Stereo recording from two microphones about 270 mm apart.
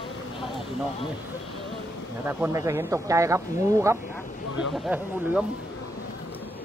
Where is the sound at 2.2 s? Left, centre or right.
Centre.